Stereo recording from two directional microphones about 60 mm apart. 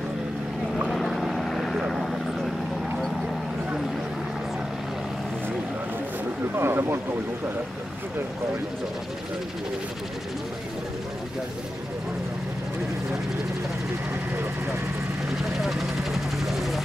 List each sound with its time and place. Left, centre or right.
0.8 s vehicle: centre
6.5 s speech: right
15.2 s vehicle: centre